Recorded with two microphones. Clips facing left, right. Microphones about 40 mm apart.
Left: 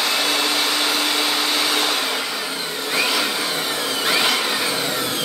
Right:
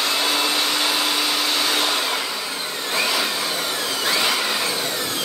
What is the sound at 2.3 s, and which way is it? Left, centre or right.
Vacuum cleaner, centre.